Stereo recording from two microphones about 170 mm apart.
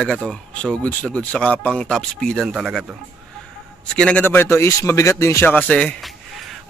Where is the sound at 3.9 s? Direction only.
5° left (ahead or behind).